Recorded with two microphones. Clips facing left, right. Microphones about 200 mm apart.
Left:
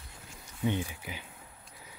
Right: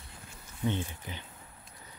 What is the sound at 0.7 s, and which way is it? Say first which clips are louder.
Speech: left 1 dB; 10° left (ahead or behind).